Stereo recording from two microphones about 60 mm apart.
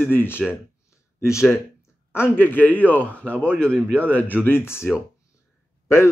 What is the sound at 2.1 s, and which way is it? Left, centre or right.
A man's voice, left.